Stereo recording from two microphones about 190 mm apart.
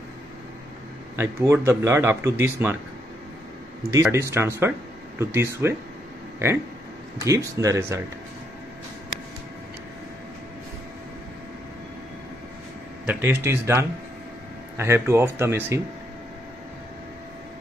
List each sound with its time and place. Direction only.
1.1 s speech: 15° right (ahead or behind)
3.9 s speech: 15° right (ahead or behind)
7.2 s speech: 15° right (ahead or behind)
13.0 s speech: 10° right (ahead or behind)